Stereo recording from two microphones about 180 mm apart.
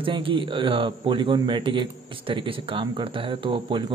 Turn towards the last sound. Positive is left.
turn(degrees=-30)  # may be behind; listen again after turning